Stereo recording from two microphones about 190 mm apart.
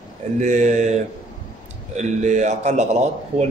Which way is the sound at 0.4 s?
40° right (ahead or behind).